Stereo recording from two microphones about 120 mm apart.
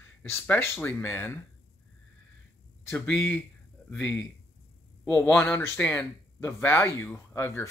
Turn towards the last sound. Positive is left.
turn(degrees=20)  # may be behind; listen again after turning